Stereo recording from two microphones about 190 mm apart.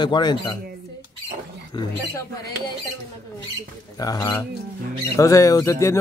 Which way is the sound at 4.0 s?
20° left (ahead or behind).